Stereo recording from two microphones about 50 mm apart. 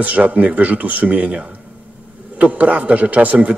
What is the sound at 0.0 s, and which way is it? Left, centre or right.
A man's voice, right.